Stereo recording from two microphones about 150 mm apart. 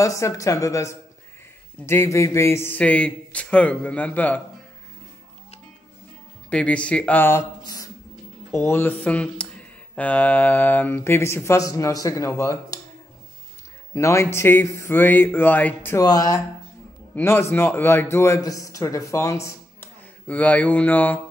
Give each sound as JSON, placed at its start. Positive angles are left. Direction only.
{"t": 0.0, "sound": "speech", "side_deg": 20}
{"t": 6.5, "sound": "speech", "side_deg": 10}
{"t": 7.6, "sound": "a sound", "side_deg": 25}
{"t": 8.5, "sound": "speech", "side_deg": 15}
{"t": 13.9, "sound": "a man's voice", "side_deg": 20}